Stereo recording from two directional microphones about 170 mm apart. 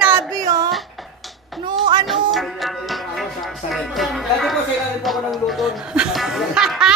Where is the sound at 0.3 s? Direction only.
20° right (ahead or behind).